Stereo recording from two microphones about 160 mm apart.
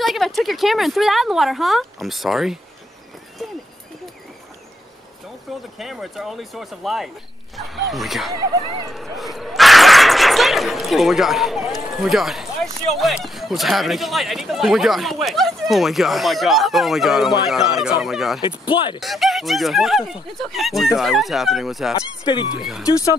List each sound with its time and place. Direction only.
0.0 s speech: centre (ahead or behind)
5.8 s speech: centre (ahead or behind)
18.7 s speech: 30° left (ahead or behind)
18.9 s speech: centre (ahead or behind)
21.9 s speech: 25° left (ahead or behind)
22.5 s speech: centre (ahead or behind)
22.8 s speech: 20° left (ahead or behind)